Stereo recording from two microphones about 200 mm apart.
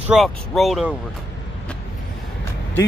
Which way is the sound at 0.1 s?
Centre (ahead or behind).